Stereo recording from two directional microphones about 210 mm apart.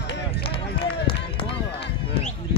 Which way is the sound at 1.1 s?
25° left (ahead or behind).